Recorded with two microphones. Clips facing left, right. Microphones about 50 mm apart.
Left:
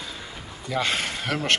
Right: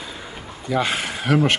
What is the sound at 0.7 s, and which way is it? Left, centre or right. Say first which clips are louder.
Speech: right 3 dB; centre.